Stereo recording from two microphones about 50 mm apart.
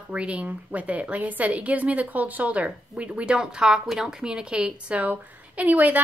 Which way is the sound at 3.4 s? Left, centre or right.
Centre.